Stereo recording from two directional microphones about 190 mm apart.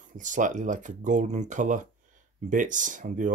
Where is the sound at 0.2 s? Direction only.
40° right (ahead or behind).